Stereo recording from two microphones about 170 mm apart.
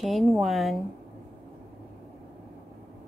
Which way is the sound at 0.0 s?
Centre (ahead or behind).